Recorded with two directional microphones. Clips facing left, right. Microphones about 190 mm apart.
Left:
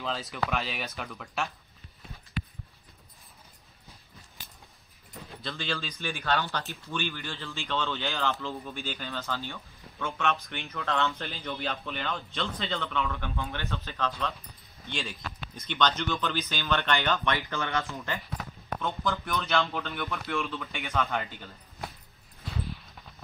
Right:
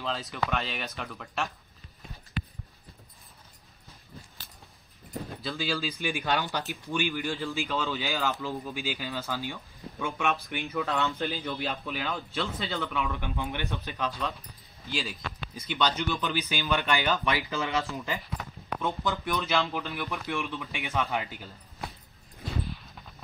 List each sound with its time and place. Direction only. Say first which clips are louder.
0.0 s speech: even; centre (ahead or behind)
5.4 s speech: right 3 dB; 5° right (ahead or behind)
11.1 s speech: right 4 dB; centre (ahead or behind)
14.9 s speech: right 2 dB; centre (ahead or behind)
20.1 s speech: even; 15° right (ahead or behind)